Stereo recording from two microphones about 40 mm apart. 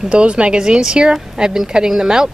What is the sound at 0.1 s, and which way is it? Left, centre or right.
A woman's voice, right.